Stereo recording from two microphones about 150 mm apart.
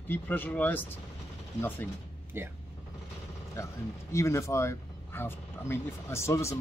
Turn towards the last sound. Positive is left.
turn(degrees=20)  # may be behind; listen again after turning